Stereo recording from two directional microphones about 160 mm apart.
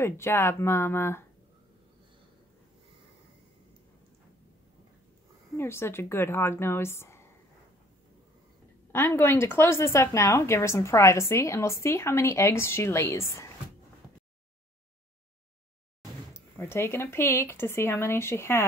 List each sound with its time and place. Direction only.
0.0 s speech: 15° left (ahead or behind)
5.6 s speech: 15° left (ahead or behind)
8.9 s speech: 15° left (ahead or behind)
16.5 s speech: 15° left (ahead or behind)